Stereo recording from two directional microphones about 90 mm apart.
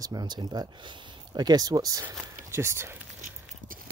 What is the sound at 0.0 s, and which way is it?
Speech, 50° right (ahead or behind).